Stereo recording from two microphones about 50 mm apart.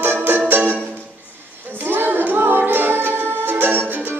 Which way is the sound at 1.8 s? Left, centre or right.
Right.